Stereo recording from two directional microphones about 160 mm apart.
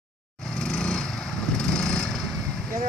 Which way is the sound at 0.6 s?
5° left (ahead or behind).